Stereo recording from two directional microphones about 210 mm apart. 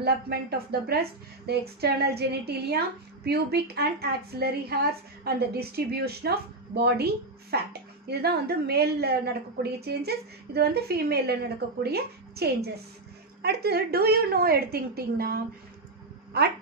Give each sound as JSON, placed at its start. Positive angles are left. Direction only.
{"t": 0.0, "sound": "a woman's voice", "side_deg": -50}